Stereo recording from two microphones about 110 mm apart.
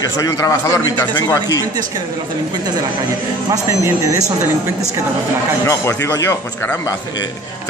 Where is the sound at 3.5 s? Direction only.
25° right (ahead or behind).